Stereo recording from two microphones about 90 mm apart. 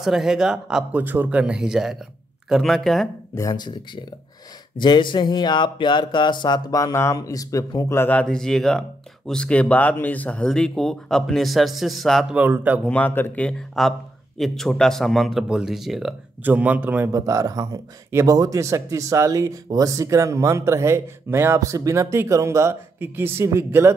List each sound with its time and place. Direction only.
0.0 s a man's voice: 5° right (ahead or behind)
0.9 s speech: 20° right (ahead or behind)
1.4 s a man's voice: 10° right (ahead or behind)
3.3 s speech: 40° left (ahead or behind)
4.7 s speech: 60° left (ahead or behind); by 7.6 s 40° left (ahead or behind)
7.9 s speech: 25° left (ahead or behind)
8.2 s speech: 5° left (ahead or behind)
12.4 s speech: 20° right (ahead or behind)
12.8 s a man's voice: 15° left (ahead or behind); by 16.2 s 5° right (ahead or behind)
16.4 s a man's voice: 15° right (ahead or behind)
17.1 s speech: 40° right (ahead or behind)